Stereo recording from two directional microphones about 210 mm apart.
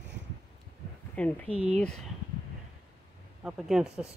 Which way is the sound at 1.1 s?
5° left (ahead or behind).